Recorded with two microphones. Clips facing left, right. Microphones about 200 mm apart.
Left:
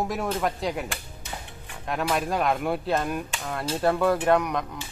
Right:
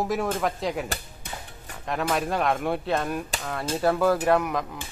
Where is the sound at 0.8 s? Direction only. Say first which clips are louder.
Right 1 dB; 40° right (ahead or behind).